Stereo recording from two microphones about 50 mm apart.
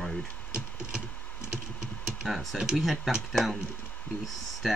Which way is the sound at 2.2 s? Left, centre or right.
Centre.